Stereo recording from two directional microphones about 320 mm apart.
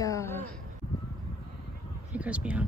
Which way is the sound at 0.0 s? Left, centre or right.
Centre.